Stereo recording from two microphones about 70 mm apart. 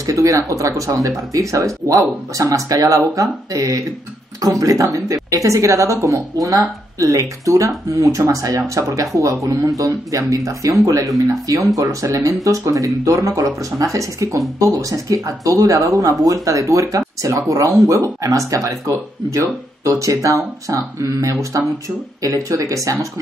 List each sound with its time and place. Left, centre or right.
0.0 s speech: right